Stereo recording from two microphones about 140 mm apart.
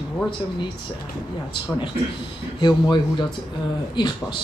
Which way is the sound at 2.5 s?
35° left (ahead or behind).